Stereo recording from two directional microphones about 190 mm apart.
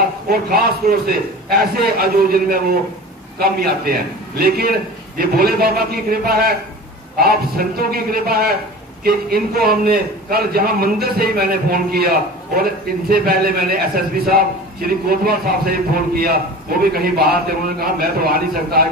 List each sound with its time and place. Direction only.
0.3 s a man's voice: 50° right (ahead or behind)